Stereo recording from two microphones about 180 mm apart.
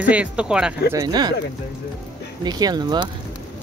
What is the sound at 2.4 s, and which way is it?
Speech, 20° right (ahead or behind).